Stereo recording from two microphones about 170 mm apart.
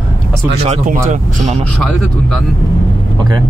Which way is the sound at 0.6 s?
40° right (ahead or behind).